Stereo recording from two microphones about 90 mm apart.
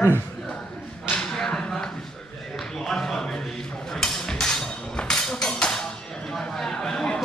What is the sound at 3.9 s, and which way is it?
Music, 5° left (ahead or behind).